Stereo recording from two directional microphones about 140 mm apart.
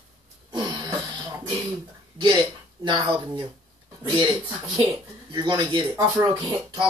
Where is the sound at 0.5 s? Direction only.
30° right (ahead or behind).